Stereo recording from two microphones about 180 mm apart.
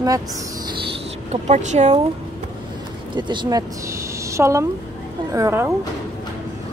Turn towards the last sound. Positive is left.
turn(degrees=-15)  # may be behind; listen again after turning